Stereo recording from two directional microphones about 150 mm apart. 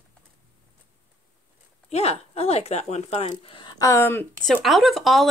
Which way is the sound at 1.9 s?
45° left (ahead or behind).